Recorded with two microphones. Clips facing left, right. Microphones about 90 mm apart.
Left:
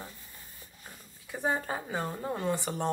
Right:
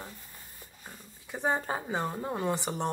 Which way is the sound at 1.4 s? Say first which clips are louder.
Right 1 dB; 25° right (ahead or behind).